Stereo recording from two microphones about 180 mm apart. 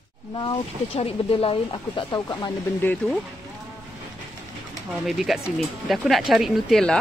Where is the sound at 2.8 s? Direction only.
5° left (ahead or behind).